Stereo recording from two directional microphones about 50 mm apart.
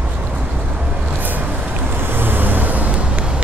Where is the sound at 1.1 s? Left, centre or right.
Right.